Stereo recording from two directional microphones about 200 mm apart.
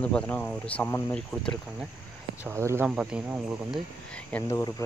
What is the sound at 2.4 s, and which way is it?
Speech, 15° right (ahead or behind).